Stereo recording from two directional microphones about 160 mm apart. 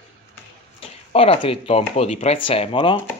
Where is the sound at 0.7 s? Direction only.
35° left (ahead or behind).